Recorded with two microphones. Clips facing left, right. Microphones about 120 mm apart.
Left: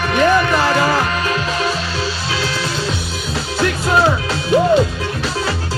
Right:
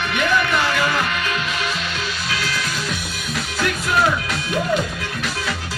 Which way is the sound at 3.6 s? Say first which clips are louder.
Left 5 dB; 30° left (ahead or behind).